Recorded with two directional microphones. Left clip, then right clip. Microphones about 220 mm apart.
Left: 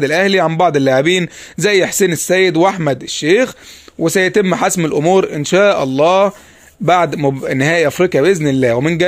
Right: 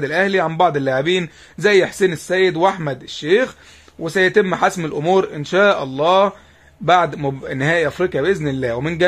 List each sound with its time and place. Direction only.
0.0 s a man's voice: 40° left (ahead or behind)